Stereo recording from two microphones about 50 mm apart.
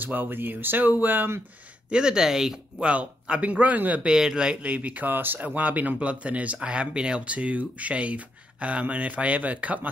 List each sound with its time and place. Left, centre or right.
0.0 s speech: right
1.9 s speech: centre
2.8 s speech: right
4.0 s speech: centre
4.6 s speech: right